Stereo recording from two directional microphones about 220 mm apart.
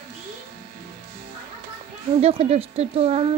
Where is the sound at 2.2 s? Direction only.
30° right (ahead or behind).